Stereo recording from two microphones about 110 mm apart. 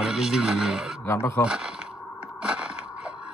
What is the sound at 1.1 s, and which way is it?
Speech, 20° left (ahead or behind).